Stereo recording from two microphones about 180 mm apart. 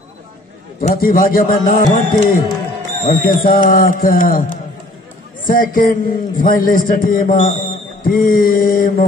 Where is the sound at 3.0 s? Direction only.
50° left (ahead or behind).